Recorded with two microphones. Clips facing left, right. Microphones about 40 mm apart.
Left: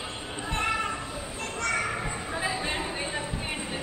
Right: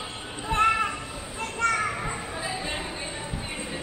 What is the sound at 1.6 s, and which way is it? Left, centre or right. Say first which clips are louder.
Children playing: right 4 dB; right.